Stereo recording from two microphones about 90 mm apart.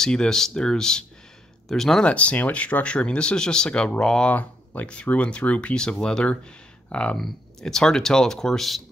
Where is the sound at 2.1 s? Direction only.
15° left (ahead or behind).